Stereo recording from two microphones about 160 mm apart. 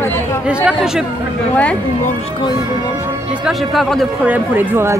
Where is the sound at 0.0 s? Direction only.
15° left (ahead or behind).